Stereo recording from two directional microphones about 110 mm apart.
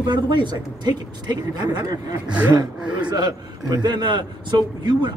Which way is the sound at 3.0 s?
40° right (ahead or behind).